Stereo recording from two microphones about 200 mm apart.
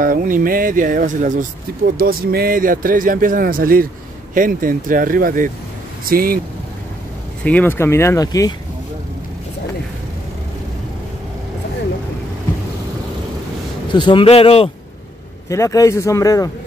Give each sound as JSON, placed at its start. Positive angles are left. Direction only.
{"t": 0.0, "sound": "speech", "side_deg": -45}
{"t": 7.4, "sound": "speech", "side_deg": 10}
{"t": 13.9, "sound": "a man's voice", "side_deg": 25}
{"t": 15.5, "sound": "speech", "side_deg": 15}